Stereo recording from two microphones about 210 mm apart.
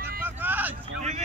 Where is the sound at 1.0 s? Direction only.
30° right (ahead or behind).